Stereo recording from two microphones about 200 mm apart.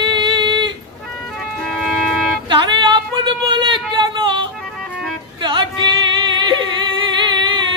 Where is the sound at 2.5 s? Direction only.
25° right (ahead or behind).